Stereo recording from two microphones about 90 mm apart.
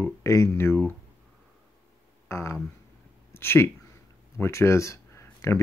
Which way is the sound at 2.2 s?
30° left (ahead or behind).